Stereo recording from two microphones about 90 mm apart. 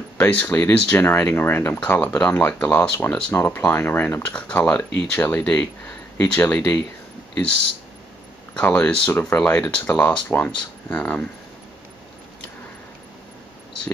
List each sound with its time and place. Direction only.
0.2 s speech: 15° left (ahead or behind)
8.5 s speech: 15° left (ahead or behind)